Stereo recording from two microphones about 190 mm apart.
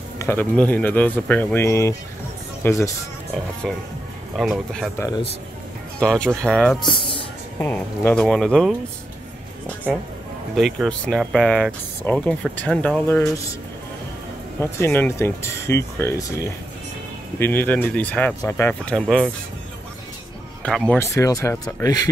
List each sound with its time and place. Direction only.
0.2 s speech: 10° left (ahead or behind)
3.6 s speech: centre (ahead or behind)
5.9 s speech: 5° left (ahead or behind)
6.9 s speech: 25° left (ahead or behind)
7.6 s speech: 10° left (ahead or behind)
10.5 s speech: centre (ahead or behind)
14.6 s speech: 10° left (ahead or behind)
20.6 s speech: 5° left (ahead or behind)